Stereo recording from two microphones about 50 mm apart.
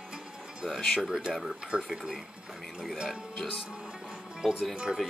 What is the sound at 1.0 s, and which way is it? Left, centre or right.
Speech, centre.